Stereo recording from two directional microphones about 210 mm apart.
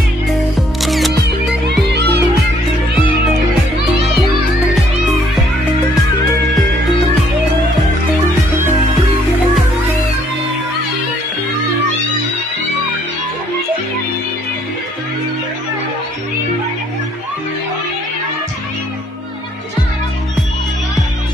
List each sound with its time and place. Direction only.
0.6 s music: centre (ahead or behind)
1.9 s music: 50° right (ahead or behind)